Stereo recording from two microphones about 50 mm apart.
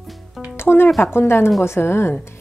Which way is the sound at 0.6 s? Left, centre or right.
Left.